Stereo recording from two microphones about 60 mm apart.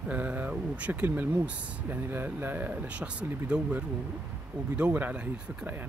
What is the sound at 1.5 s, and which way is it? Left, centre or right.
Speech, right.